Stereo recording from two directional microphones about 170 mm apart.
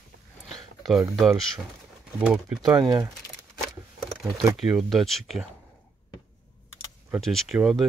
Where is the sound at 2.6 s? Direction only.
25° right (ahead or behind).